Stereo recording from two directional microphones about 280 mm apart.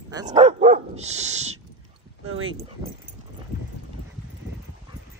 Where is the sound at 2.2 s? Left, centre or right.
Right.